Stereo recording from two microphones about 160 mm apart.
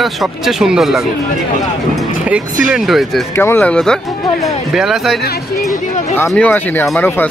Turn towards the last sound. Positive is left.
turn(degrees=15)  # may be behind; listen again after turning